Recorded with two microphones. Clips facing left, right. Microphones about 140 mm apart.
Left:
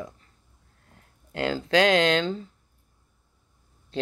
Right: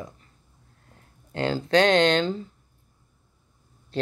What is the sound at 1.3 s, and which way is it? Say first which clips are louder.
Speech: right 1 dB; 30° right (ahead or behind).